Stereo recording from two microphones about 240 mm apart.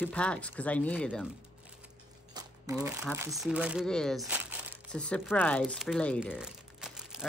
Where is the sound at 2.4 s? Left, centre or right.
Centre.